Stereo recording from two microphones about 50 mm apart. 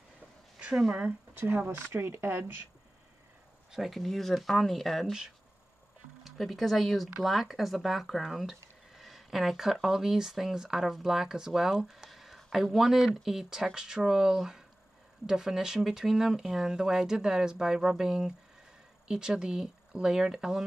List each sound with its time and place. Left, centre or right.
0.6 s speech: centre
1.5 s speech: right
3.7 s speech: centre
6.2 s speech: centre